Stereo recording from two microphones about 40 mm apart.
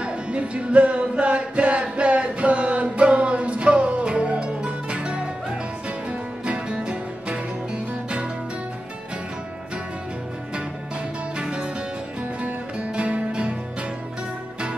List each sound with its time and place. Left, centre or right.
0.0 s music: right
11.3 s music: right